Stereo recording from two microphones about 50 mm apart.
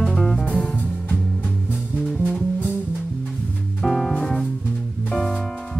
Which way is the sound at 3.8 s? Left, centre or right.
Centre.